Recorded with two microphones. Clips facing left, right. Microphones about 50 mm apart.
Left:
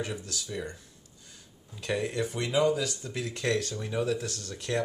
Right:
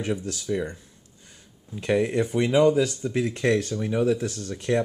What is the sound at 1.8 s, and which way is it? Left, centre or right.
Speech, right.